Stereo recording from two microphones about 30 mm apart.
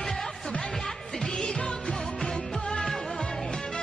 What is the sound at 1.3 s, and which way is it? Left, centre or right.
Speech, left.